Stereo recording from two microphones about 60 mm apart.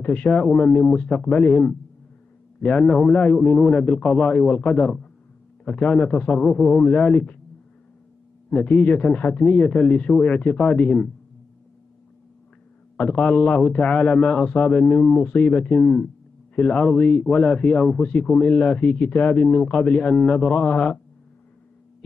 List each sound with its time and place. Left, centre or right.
0.0 s a man's voice: left
8.5 s a man's voice: centre
12.9 s a man's voice: left